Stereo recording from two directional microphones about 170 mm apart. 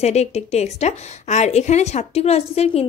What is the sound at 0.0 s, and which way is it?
Speech, 40° left (ahead or behind).